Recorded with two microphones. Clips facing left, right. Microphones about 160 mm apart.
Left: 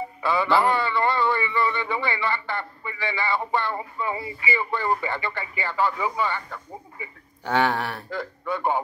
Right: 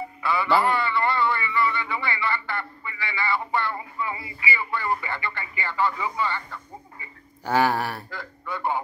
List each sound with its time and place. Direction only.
0.2 s a sound: 20° left (ahead or behind)
0.7 s speech: 20° left (ahead or behind)
7.4 s speech: 5° right (ahead or behind)
8.1 s speech: 15° left (ahead or behind)